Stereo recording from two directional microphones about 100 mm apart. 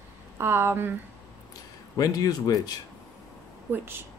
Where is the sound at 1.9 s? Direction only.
40° left (ahead or behind).